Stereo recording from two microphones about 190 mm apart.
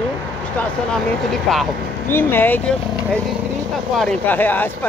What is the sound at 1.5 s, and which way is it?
Speech, centre (ahead or behind).